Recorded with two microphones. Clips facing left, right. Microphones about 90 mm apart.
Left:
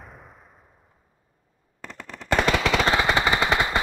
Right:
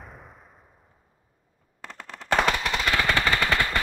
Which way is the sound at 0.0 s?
Centre (ahead or behind).